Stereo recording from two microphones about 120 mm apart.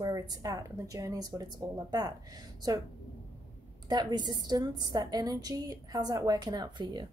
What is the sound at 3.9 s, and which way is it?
A woman's voice, 35° right (ahead or behind).